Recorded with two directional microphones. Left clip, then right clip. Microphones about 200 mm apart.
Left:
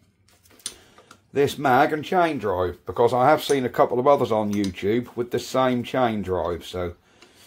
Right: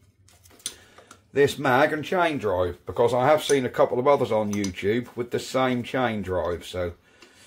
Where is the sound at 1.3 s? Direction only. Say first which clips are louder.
Left 1 dB; 25° left (ahead or behind).